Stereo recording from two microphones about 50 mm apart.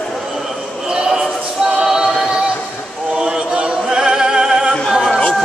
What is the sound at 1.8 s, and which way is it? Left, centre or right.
Choir, centre.